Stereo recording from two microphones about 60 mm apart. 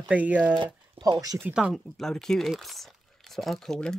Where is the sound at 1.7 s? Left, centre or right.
Centre.